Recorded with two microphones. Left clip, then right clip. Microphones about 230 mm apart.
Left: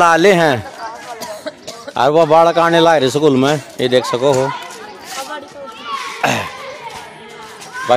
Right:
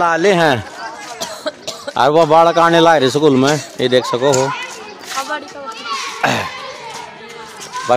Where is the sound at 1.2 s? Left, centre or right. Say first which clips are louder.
Right 6 dB; right.